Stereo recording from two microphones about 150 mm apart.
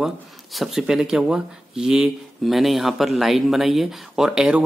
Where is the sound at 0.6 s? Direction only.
Centre (ahead or behind).